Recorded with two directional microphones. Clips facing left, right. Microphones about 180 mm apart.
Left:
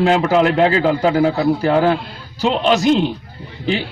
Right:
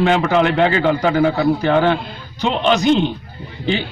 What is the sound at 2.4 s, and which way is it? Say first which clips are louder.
Speech: left 1 dB; 5° left (ahead or behind).